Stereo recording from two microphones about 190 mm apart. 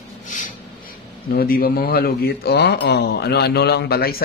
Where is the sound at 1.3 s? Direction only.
50° left (ahead or behind).